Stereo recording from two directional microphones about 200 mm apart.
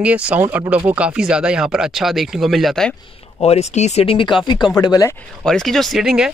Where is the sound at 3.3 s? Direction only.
30° left (ahead or behind).